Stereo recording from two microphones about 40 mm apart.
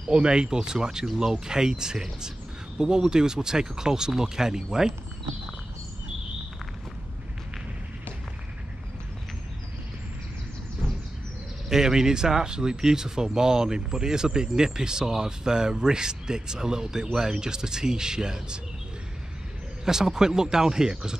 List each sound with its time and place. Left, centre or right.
0.1 s speech: right
11.7 s speech: centre
19.8 s speech: centre